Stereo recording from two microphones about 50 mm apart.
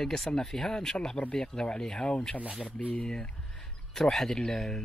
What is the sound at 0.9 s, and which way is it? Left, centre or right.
Speech, centre.